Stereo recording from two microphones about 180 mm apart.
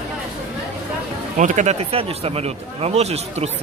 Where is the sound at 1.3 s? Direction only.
40° right (ahead or behind).